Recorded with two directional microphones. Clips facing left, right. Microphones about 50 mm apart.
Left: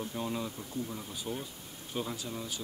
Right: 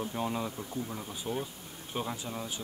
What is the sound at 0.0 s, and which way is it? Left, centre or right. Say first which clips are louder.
Speech: right 2 dB; centre.